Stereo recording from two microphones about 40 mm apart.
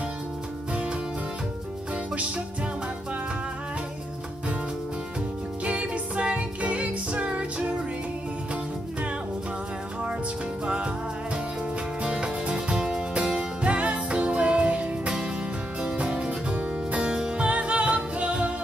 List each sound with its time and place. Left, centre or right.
5.7 s music: right
10.6 s music: right
12.0 s music: right
13.6 s music: right